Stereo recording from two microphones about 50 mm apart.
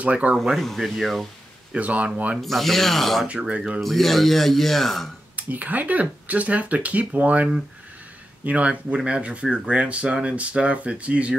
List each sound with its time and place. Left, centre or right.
0.0 s speech: right
0.6 s a man's voice: centre
1.8 s speech: right
2.4 s a man's voice: centre
3.3 s speech: right
3.8 s a man's voice: centre
5.3 s speech: right
8.5 s speech: right